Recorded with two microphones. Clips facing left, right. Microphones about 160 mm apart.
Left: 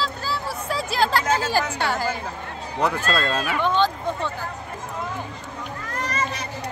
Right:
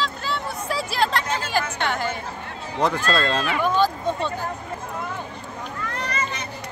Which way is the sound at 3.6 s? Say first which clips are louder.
Even; 10° right (ahead or behind).